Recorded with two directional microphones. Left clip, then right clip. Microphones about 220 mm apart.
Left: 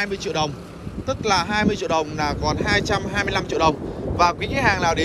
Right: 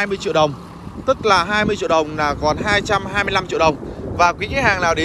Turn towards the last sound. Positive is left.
turn(degrees=0)  # may be behind; listen again after turning